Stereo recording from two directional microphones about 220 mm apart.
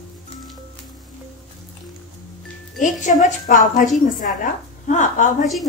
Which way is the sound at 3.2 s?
35° left (ahead or behind).